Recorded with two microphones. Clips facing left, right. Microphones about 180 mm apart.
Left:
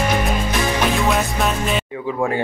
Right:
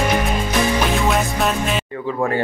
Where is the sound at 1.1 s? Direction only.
Centre (ahead or behind).